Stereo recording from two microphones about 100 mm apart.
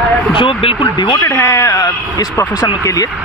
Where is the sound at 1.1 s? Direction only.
35° left (ahead or behind).